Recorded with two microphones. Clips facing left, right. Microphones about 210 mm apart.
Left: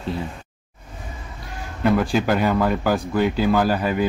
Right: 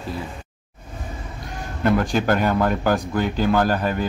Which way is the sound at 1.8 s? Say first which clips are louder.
Left 1 dB; 5° left (ahead or behind).